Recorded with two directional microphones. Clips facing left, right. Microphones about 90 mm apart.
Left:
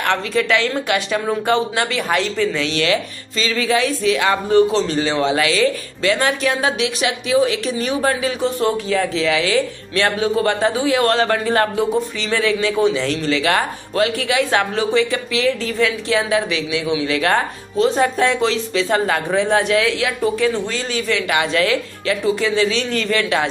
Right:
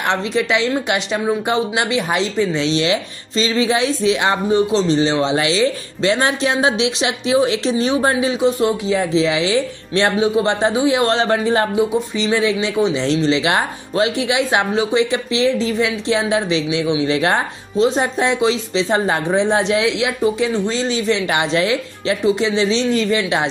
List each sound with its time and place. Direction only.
0.0 s speech: 20° right (ahead or behind)